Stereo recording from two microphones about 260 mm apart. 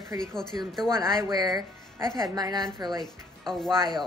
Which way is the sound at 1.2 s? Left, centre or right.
Centre.